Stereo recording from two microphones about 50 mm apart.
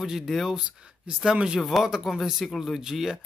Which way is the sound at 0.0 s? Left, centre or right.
Centre.